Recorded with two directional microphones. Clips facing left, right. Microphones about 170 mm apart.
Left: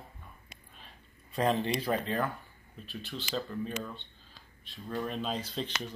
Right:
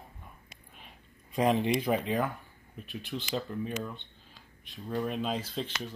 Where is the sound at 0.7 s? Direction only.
15° right (ahead or behind).